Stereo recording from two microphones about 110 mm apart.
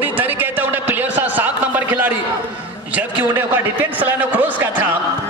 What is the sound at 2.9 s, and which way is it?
A man's voice, 20° right (ahead or behind).